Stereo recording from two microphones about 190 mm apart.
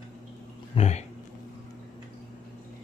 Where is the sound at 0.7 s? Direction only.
35° left (ahead or behind).